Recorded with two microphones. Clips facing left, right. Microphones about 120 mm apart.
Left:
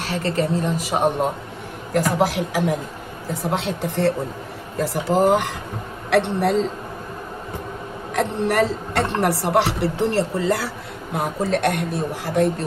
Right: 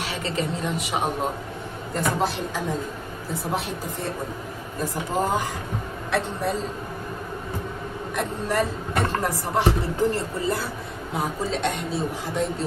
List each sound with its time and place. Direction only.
0.0 s a man's voice: 40° left (ahead or behind)
2.0 s a woman's voice: 90° left
6.0 s a woman's voice: 90° left
8.1 s a woman's voice: 90° left
11.1 s speech: 65° left (ahead or behind)